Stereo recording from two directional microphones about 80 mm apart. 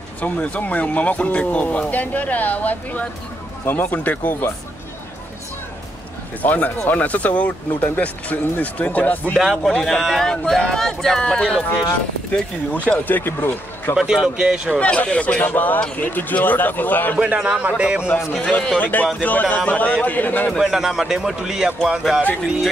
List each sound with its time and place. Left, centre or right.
0.2 s speech: centre
6.4 s speech: left
9.3 s a man's voice: centre
9.6 s speech: centre
12.8 s speech: centre
13.9 s speech: centre
14.8 s speech: centre
17.2 s speech: centre
18.4 s speech: centre
20.5 s a man's voice: centre